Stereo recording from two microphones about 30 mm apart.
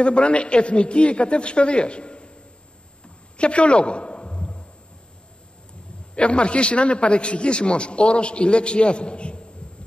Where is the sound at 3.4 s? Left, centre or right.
Left.